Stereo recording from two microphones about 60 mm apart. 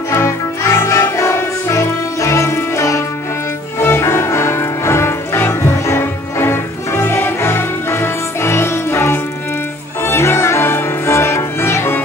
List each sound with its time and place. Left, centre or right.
0.1 s music: left
3.8 s music: left